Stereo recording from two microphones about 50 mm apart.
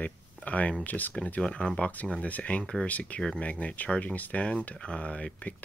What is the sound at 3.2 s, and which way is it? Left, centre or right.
Speech, centre.